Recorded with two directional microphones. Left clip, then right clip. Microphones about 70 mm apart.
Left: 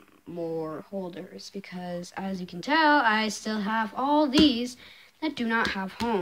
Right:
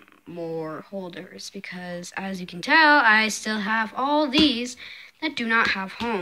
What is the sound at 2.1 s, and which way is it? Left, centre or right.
A woman's voice, centre.